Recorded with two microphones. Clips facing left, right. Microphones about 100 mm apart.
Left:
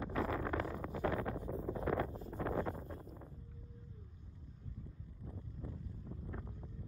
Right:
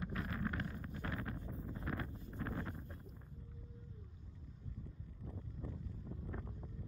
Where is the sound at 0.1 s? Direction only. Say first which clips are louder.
Left 8 dB; 90° left.